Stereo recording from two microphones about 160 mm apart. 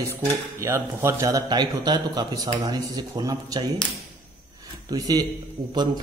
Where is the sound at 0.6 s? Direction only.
15° right (ahead or behind).